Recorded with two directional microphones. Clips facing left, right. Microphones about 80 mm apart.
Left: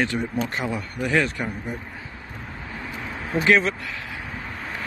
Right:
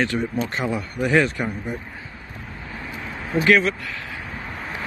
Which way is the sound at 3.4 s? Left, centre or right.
Centre.